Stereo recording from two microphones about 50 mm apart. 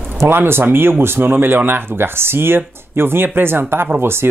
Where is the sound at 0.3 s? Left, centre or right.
Right.